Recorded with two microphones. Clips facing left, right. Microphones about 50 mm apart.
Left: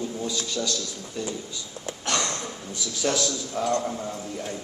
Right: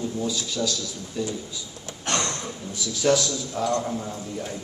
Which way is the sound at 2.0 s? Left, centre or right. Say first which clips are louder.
Right 1 dB; right.